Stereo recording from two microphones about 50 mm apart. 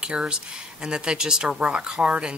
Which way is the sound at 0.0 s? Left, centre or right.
Right.